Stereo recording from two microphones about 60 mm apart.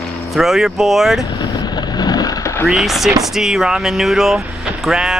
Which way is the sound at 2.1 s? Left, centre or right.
Left.